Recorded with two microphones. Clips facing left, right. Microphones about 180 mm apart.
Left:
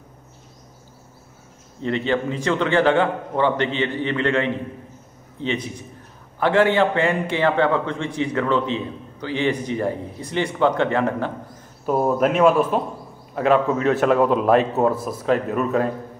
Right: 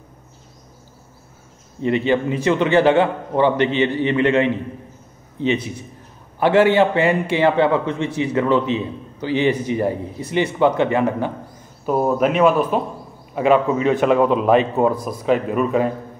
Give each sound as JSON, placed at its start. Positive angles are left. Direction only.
{"t": 1.8, "sound": "a man's voice", "side_deg": -15}
{"t": 6.4, "sound": "a man's voice", "side_deg": -15}
{"t": 8.1, "sound": "a man's voice", "side_deg": -5}
{"t": 9.5, "sound": "a man's voice", "side_deg": -10}